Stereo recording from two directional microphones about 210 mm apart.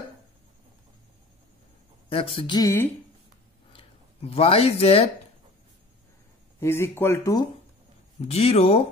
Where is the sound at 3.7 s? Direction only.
30° left (ahead or behind).